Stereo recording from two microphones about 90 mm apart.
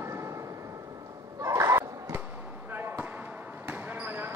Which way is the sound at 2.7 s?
25° right (ahead or behind).